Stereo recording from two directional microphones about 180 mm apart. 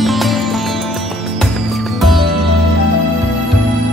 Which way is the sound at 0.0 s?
Centre (ahead or behind).